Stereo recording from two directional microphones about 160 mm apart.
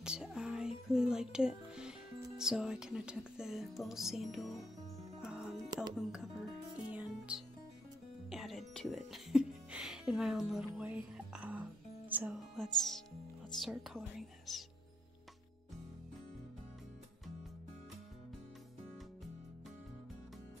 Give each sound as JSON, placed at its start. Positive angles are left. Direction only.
{"t": 0.0, "sound": "music", "side_deg": -5}
{"t": 12.1, "sound": "speech", "side_deg": -10}
{"t": 12.5, "sound": "music", "side_deg": 5}